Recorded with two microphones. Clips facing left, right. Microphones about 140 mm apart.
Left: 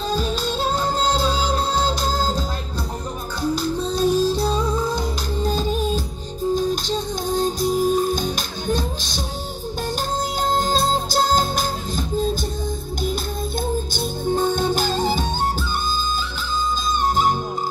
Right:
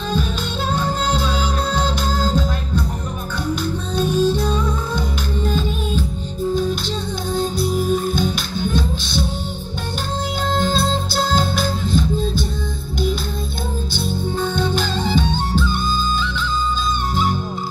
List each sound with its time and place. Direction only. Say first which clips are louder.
0.7 s music: right 2 dB; 35° left (ahead or behind)
3.9 s music: right 2 dB; 35° left (ahead or behind)
10.5 s music: right 1 dB; 40° left (ahead or behind)
13.9 s music: right 1 dB; 45° left (ahead or behind)
17.1 s music: left 2 dB; 45° left (ahead or behind)